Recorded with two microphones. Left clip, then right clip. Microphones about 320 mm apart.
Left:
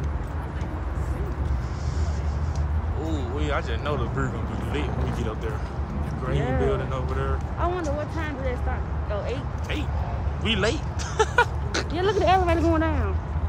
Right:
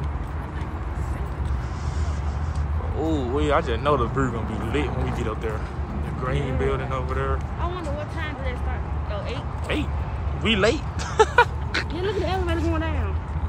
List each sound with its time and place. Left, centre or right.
3.1 s speech: centre
10.4 s speech: centre
12.7 s a man's voice: left